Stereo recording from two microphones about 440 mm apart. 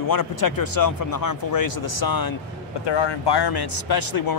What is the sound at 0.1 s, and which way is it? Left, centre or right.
A man's voice, left.